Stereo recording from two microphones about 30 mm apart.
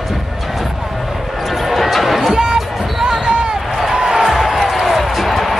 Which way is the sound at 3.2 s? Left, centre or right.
Right.